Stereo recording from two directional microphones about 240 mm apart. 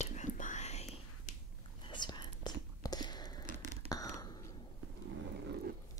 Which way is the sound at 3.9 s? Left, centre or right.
Centre.